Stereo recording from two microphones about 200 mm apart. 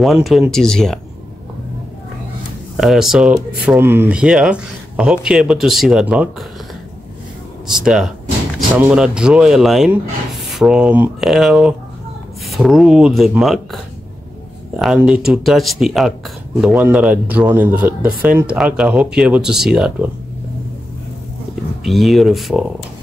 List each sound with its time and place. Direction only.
0.0 s speech: centre (ahead or behind)
2.8 s speech: centre (ahead or behind)
7.6 s speech: 5° right (ahead or behind)
14.8 s speech: 5° right (ahead or behind)
21.8 s speech: centre (ahead or behind)